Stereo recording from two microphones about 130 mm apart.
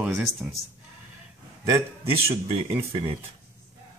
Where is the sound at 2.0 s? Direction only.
50° right (ahead or behind).